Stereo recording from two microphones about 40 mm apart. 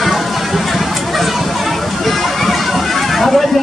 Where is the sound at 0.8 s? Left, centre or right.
Centre.